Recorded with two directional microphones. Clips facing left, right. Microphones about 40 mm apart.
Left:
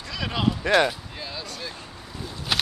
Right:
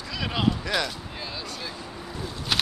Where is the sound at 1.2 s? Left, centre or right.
Centre.